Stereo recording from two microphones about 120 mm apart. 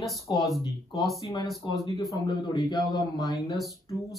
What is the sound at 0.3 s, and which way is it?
Speech, 35° left (ahead or behind).